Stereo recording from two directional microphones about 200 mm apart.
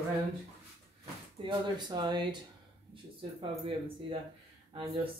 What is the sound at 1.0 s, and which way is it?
Speech, 25° right (ahead or behind).